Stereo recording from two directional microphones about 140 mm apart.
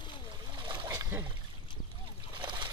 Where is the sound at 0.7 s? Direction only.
30° right (ahead or behind).